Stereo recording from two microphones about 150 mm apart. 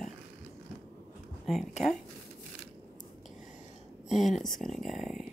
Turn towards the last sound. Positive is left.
turn(degrees=-5)  # may be behind; listen again after turning